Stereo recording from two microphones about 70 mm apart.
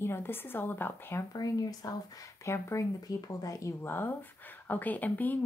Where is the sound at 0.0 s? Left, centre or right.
Left.